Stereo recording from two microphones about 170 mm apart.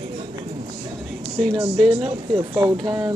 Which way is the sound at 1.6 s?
25° right (ahead or behind).